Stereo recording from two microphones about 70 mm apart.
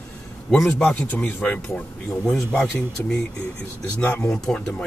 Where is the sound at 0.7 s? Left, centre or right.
Centre.